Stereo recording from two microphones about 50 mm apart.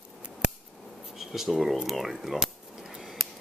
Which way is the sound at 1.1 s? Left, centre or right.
Centre.